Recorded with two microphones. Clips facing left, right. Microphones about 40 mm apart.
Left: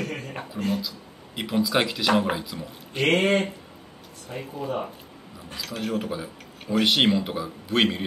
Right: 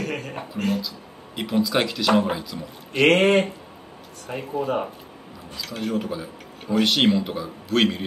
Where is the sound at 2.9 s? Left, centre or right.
Right.